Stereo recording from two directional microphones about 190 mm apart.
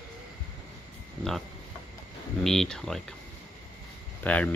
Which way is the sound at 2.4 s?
Centre (ahead or behind).